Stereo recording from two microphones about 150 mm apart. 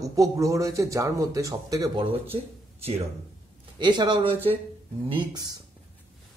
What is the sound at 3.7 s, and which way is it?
Speech, 30° right (ahead or behind).